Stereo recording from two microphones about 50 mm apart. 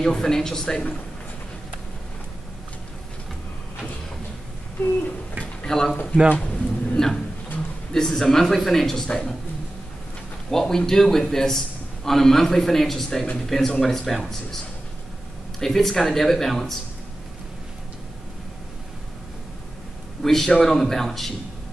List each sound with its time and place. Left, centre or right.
0.0 s a man's voice: centre
5.7 s a man's voice: centre
6.3 s a sound: left
7.9 s a man's voice: centre
10.5 s a man's voice: centre
15.6 s speech: centre
20.2 s a man's voice: centre